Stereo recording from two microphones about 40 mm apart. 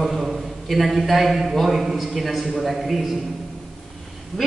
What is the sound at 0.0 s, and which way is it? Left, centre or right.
A man's voice, centre.